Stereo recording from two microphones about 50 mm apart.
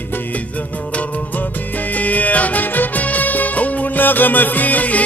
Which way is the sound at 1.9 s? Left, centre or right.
Left.